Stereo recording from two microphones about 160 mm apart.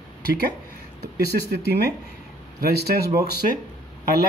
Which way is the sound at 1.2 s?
80° right.